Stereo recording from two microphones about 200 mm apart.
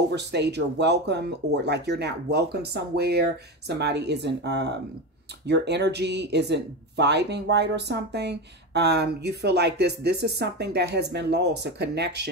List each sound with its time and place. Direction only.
0.1 s speech: 60° right (ahead or behind)